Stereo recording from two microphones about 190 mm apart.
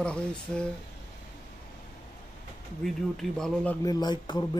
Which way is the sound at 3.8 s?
20° left (ahead or behind).